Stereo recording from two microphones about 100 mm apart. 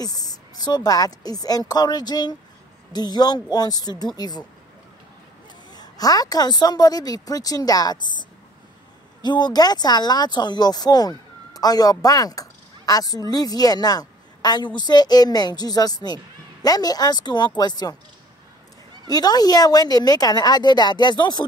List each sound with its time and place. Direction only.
0.0 s a woman's voice: 40° left (ahead or behind)
5.8 s a woman's voice: 40° left (ahead or behind)
19.0 s a woman's voice: 40° left (ahead or behind)